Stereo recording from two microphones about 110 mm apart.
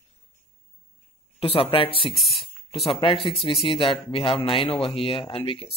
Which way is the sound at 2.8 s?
55° left (ahead or behind).